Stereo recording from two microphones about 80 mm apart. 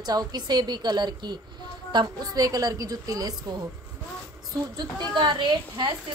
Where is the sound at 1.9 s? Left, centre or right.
Right.